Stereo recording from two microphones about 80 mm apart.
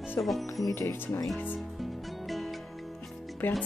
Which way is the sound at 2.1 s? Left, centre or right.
Centre.